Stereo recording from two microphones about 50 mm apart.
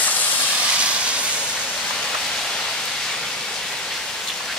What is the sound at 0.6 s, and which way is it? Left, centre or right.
Vehicle, right.